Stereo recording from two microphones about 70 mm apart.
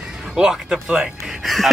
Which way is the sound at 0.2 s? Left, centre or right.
Centre.